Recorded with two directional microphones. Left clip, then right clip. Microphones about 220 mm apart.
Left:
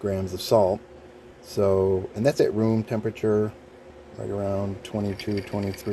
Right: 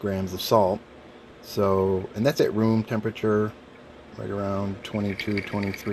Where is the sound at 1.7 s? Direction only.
15° right (ahead or behind).